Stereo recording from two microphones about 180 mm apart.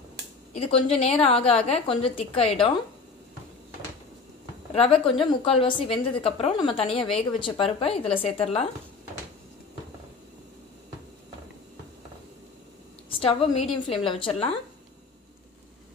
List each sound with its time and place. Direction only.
0.5 s a woman's voice: 35° left (ahead or behind)
4.7 s a woman's voice: 30° left (ahead or behind)
13.2 s a woman's voice: 30° left (ahead or behind)